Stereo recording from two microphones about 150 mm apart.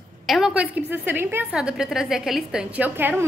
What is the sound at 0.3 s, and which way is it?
A woman's voice, 5° right (ahead or behind).